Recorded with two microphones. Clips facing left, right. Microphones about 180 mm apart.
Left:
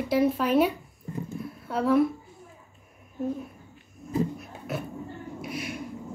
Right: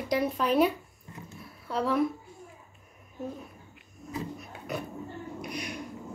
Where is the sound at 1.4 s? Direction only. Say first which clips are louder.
Left 3 dB; centre (ahead or behind).